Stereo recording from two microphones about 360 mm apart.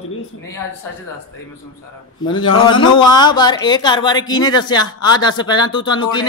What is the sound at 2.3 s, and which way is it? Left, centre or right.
Speech, left.